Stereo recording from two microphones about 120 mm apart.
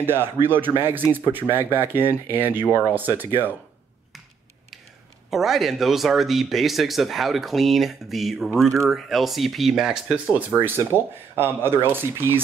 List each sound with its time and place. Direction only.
0.0 s speech: 20° right (ahead or behind)
5.3 s speech: centre (ahead or behind); by 12.4 s 20° right (ahead or behind)